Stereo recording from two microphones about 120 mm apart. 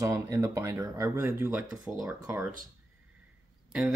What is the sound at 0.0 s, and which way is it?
Speech, 25° right (ahead or behind).